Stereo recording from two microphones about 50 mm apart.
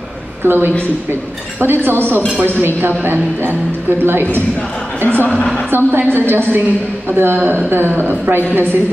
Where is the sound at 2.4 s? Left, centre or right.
Right.